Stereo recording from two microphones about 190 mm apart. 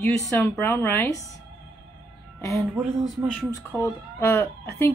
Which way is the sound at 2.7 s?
5° right (ahead or behind).